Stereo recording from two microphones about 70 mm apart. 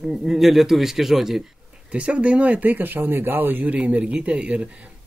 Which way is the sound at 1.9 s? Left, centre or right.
Centre.